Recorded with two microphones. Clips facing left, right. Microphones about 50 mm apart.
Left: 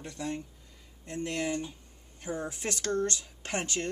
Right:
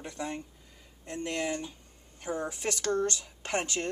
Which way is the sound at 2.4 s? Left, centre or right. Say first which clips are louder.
Right 2 dB; right.